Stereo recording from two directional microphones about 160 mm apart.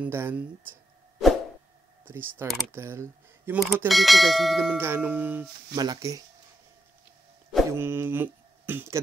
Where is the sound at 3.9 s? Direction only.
Centre (ahead or behind).